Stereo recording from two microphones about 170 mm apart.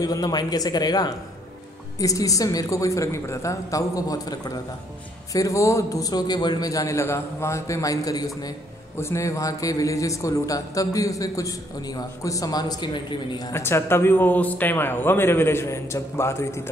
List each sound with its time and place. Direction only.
0.0 s a man's voice: 20° left (ahead or behind)